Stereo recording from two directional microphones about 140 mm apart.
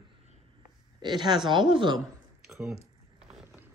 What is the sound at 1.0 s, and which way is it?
Speech, 30° right (ahead or behind).